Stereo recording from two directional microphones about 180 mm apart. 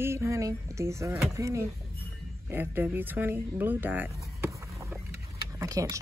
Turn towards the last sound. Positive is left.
turn(degrees=-20)  # may be behind; listen again after turning